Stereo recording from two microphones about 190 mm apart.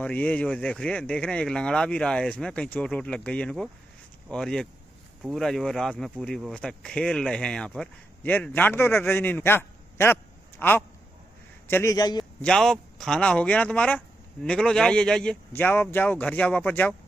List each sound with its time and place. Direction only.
0.0 s a man's voice: 5° left (ahead or behind)
12.4 s speech: 5° left (ahead or behind)